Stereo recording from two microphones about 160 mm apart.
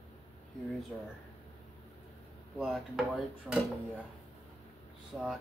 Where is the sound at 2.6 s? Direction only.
5° right (ahead or behind).